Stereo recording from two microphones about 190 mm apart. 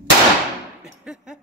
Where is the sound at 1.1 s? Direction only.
5° right (ahead or behind).